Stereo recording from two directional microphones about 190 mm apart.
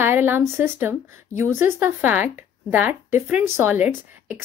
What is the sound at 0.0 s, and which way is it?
Speech, 10° right (ahead or behind).